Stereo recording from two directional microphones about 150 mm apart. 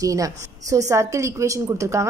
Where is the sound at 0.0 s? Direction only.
20° right (ahead or behind).